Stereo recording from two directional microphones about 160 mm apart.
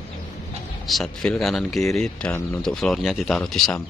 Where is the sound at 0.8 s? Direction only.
Centre (ahead or behind).